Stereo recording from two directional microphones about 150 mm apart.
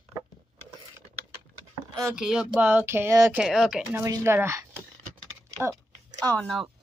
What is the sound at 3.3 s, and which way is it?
Speech, 5° right (ahead or behind).